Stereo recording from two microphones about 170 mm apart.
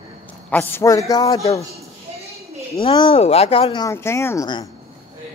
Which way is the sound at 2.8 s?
30° left (ahead or behind).